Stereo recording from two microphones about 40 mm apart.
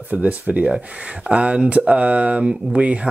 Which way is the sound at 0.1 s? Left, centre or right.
Right.